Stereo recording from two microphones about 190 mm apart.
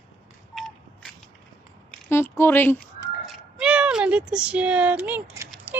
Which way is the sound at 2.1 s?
15° left (ahead or behind).